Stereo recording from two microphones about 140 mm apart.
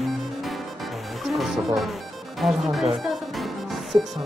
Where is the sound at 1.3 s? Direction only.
Centre (ahead or behind).